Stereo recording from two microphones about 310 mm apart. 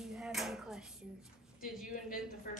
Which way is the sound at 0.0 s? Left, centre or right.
Centre.